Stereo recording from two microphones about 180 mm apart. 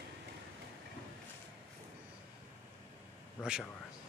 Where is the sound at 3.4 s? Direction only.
15° left (ahead or behind).